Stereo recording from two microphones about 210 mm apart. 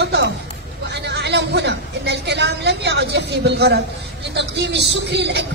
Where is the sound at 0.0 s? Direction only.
55° right (ahead or behind).